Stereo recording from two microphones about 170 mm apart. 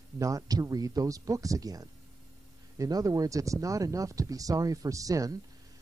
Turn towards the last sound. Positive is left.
turn(degrees=-20)  # may be behind; listen again after turning